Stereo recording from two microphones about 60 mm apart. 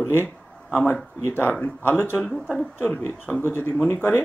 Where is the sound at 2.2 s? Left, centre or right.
Centre.